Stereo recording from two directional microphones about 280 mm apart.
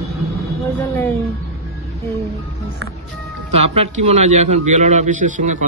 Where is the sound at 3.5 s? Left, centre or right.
Right.